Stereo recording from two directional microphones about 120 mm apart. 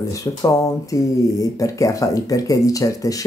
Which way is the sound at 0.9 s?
30° left (ahead or behind).